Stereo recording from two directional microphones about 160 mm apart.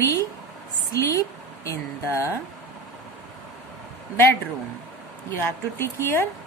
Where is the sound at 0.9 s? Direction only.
20° left (ahead or behind).